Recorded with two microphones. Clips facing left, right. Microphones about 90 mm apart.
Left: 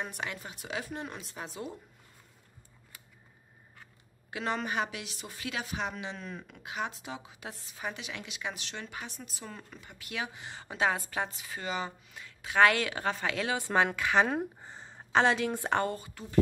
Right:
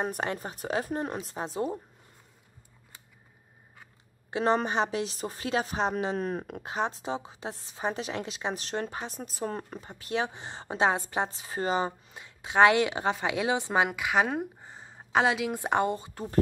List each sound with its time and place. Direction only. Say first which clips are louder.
0.0 s a woman's voice: right 7 dB; 40° right (ahead or behind)
4.3 s a woman's voice: right 7 dB; 30° right (ahead or behind); by 6.6 s 50° right (ahead or behind)
6.6 s a woman's voice: right 3 dB; 35° right (ahead or behind); by 16.1 s 20° right (ahead or behind)